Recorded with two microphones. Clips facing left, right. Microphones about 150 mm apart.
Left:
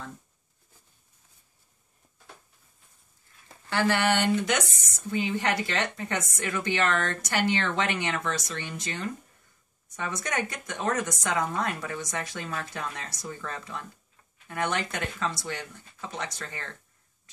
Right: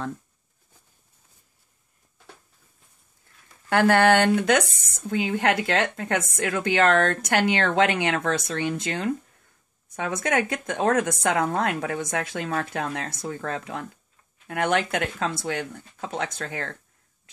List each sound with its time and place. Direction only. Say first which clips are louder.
3.6 s speech: right 7 dB; 55° right (ahead or behind)